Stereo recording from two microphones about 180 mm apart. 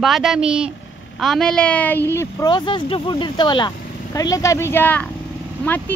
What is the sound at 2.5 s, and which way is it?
Speech, 25° left (ahead or behind).